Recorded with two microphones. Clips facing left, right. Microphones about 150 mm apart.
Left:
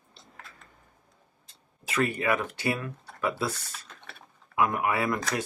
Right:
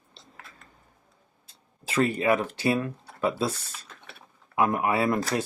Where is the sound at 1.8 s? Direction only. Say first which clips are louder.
Right 3 dB; 30° right (ahead or behind).